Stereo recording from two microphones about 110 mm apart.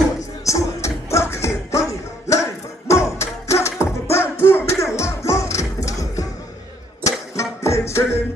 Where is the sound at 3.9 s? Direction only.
25° left (ahead or behind).